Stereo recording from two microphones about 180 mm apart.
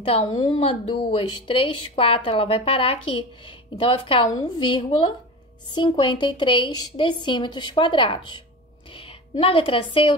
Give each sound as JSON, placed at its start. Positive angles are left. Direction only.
{"t": 0.0, "sound": "a woman's voice", "side_deg": 30}